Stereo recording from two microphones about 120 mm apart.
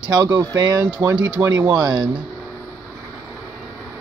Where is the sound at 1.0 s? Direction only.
15° right (ahead or behind).